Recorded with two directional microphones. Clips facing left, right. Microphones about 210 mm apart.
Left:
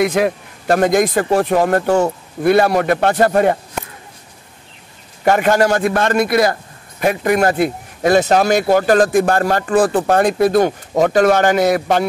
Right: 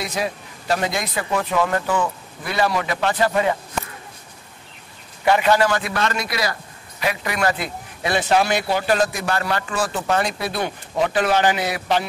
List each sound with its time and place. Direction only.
0.0 s a man's voice: 55° left (ahead or behind)
5.2 s a man's voice: 45° left (ahead or behind)